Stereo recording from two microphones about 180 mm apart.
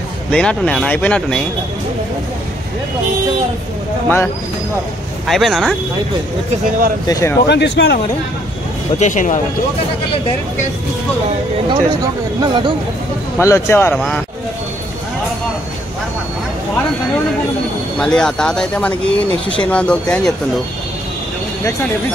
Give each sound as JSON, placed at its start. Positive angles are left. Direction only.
{"t": 0.3, "sound": "speech", "side_deg": 5}
{"t": 5.2, "sound": "speech", "side_deg": 0}
{"t": 7.1, "sound": "speech", "side_deg": 15}
{"t": 7.4, "sound": "speech", "side_deg": 75}
{"t": 9.0, "sound": "speech", "side_deg": 45}
{"t": 11.7, "sound": "speech", "side_deg": -25}
{"t": 13.4, "sound": "speech", "side_deg": 15}
{"t": 17.9, "sound": "speech", "side_deg": 5}